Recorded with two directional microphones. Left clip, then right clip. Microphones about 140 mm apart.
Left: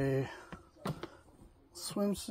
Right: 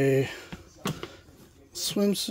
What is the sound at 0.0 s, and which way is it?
Speech, 25° right (ahead or behind).